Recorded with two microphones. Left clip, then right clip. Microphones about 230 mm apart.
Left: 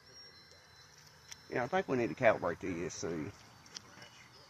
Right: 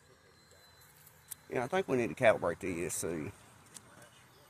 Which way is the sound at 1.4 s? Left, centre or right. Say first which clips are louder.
Right 1 dB; right.